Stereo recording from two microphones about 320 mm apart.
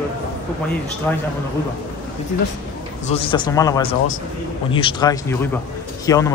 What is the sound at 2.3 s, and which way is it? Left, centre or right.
A man's voice, left.